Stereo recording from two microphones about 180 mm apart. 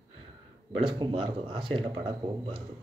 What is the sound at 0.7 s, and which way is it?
Speech, 30° right (ahead or behind).